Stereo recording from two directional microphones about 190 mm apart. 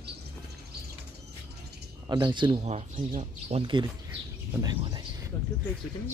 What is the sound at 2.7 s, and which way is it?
Speech, 40° right (ahead or behind).